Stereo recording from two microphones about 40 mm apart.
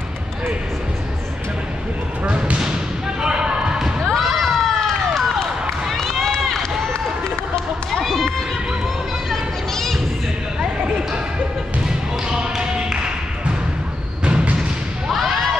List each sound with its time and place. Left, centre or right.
2.2 s speech: right
3.2 s basketball bounce: centre
4.1 s run: centre
6.9 s run: centre
7.9 s run: centre
9.3 s children playing: centre
12.3 s basketball bounce: centre
14.2 s a sound: right